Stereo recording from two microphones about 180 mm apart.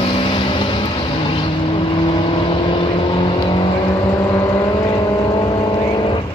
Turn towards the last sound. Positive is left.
turn(degrees=25)  # may be behind; listen again after turning